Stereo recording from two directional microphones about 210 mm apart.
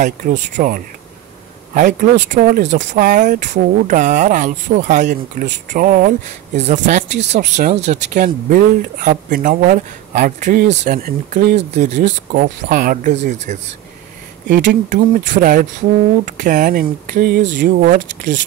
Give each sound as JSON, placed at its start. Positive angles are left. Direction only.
{"t": 0.0, "sound": "speech", "side_deg": -35}
{"t": 17.6, "sound": "speech", "side_deg": -40}